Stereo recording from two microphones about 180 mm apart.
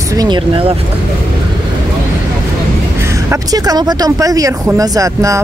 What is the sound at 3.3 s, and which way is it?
Speech, 20° right (ahead or behind).